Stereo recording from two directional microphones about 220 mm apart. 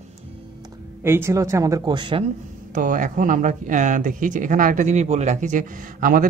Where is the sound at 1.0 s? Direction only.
10° right (ahead or behind).